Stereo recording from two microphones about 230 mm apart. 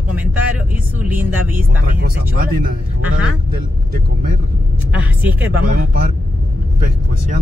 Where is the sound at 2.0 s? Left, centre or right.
Right.